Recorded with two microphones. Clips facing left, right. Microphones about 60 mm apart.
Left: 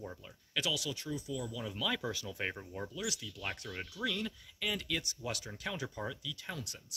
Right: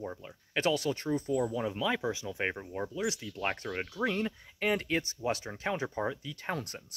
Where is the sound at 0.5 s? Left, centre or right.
Right.